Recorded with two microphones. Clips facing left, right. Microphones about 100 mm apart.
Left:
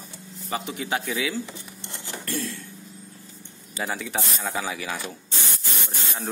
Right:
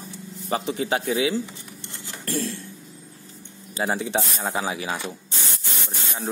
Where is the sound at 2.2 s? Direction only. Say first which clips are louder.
Right 4 dB; 25° right (ahead or behind).